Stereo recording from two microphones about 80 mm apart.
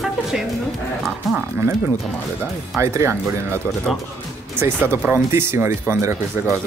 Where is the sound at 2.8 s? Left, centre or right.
Right.